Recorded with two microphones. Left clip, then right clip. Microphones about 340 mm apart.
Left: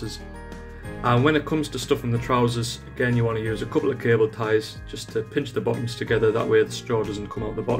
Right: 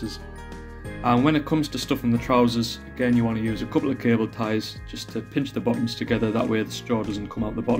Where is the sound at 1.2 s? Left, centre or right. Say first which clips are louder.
Left 1 dB; centre.